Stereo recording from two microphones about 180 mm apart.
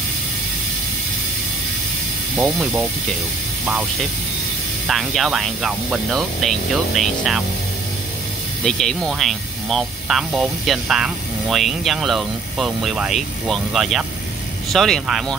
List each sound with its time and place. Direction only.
2.3 s speech: 5° right (ahead or behind)
4.8 s speech: centre (ahead or behind)
8.6 s speech: 5° left (ahead or behind)